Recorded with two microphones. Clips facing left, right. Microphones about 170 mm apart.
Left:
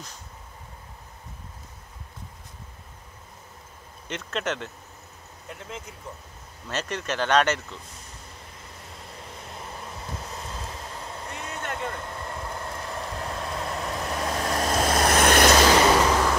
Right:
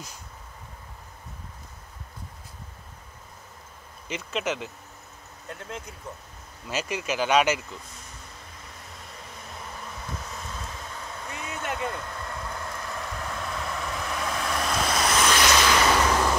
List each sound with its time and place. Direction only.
4.1 s speech: 5° right (ahead or behind)
9.4 s vehicle: 30° left (ahead or behind)
11.2 s vehicle: 5° right (ahead or behind)
12.1 s vehicle: 25° left (ahead or behind)